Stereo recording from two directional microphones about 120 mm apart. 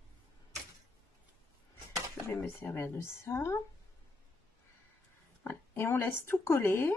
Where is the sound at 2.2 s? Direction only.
20° left (ahead or behind).